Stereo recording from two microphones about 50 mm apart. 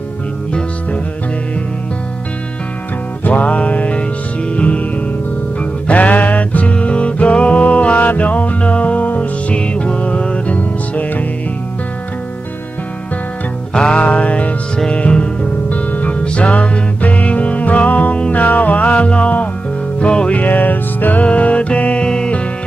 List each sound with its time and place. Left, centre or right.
3.3 s music: left
13.7 s music: left
21.2 s music: left